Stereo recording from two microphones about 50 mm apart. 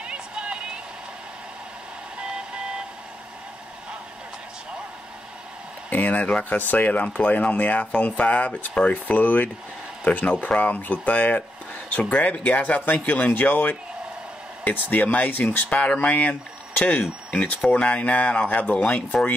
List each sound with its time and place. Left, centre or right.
0.0 s vehicle: centre
2.1 s vehicle: right
5.9 s speech: left